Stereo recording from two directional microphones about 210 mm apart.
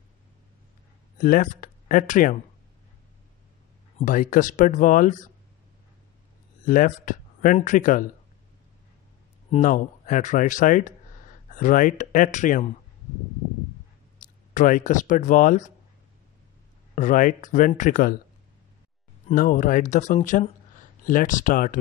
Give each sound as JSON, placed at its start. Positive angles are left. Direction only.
{"t": 1.1, "sound": "speech", "side_deg": 40}
{"t": 4.0, "sound": "speech", "side_deg": 40}
{"t": 6.6, "sound": "speech", "side_deg": 40}
{"t": 9.5, "sound": "speech", "side_deg": 35}
{"t": 14.5, "sound": "speech", "side_deg": 40}
{"t": 16.9, "sound": "speech", "side_deg": 40}
{"t": 19.2, "sound": "speech", "side_deg": 40}